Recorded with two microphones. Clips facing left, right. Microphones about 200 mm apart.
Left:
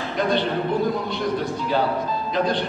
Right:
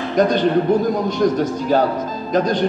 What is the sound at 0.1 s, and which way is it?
A man's voice, 45° right (ahead or behind).